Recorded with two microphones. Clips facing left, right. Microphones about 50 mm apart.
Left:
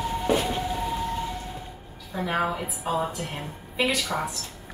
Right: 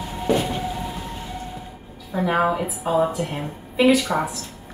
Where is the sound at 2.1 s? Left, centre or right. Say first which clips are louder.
Right 6 dB; centre.